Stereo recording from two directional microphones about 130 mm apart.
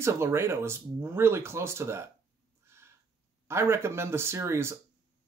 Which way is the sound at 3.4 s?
20° right (ahead or behind).